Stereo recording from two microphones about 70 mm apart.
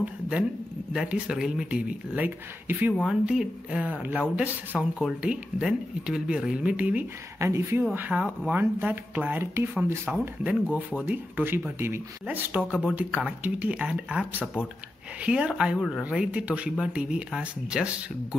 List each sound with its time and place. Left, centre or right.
0.0 s a man's voice: centre
1.3 s speech: centre
1.8 s speech: centre
3.1 s speech: centre
3.8 s speech: right
7.3 s speech: right
8.1 s speech: centre
8.5 s speech: right
10.1 s speech: centre; by 12.0 s right
12.3 s speech: right
15.2 s speech: centre